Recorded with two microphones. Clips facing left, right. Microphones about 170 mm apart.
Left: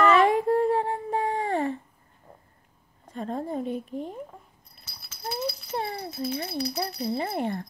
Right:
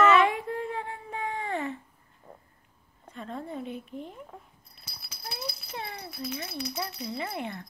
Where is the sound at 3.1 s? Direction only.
40° left (ahead or behind).